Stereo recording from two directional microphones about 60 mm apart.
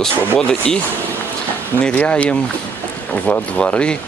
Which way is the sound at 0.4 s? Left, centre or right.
Centre.